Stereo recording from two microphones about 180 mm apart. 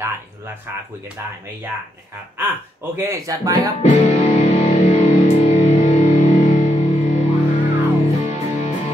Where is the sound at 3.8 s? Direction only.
35° left (ahead or behind).